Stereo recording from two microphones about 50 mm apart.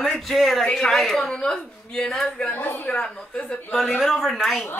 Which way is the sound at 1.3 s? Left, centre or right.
Centre.